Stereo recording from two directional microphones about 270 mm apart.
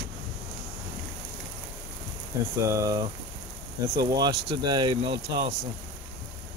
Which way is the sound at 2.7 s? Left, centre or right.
Centre.